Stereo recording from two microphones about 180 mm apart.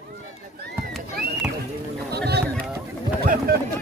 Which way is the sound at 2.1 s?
65° right (ahead or behind).